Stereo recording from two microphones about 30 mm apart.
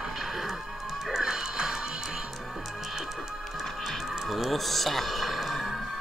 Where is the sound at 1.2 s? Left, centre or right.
Centre.